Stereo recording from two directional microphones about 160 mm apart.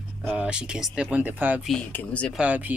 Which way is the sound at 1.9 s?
10° left (ahead or behind).